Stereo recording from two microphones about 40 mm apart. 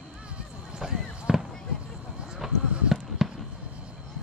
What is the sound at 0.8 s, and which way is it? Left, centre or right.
Fireworks, centre.